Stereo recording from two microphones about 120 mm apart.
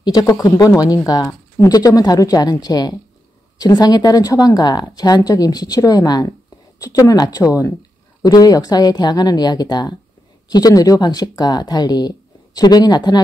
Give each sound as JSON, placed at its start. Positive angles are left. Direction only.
{"t": 0.0, "sound": "speech", "side_deg": 35}